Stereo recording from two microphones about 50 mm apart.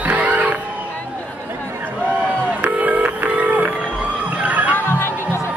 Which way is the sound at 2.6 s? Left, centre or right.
Right.